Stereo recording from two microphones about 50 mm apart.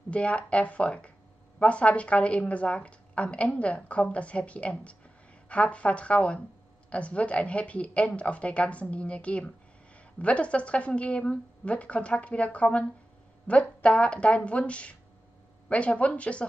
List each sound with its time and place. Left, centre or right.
0.1 s a woman's voice: left